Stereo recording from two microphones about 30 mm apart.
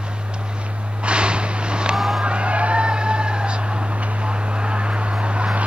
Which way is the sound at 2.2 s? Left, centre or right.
Right.